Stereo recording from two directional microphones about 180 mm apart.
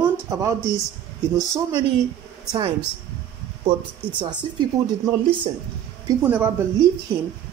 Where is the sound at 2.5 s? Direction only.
25° right (ahead or behind).